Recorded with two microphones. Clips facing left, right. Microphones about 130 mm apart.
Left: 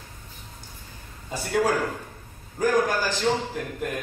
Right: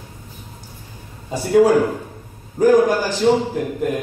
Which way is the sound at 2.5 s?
15° right (ahead or behind).